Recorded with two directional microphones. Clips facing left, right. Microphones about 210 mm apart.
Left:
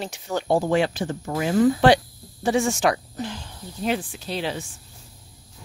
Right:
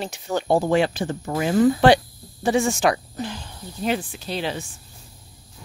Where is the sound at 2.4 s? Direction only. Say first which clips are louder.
Right 1 dB; 15° right (ahead or behind); by 4.7 s centre (ahead or behind).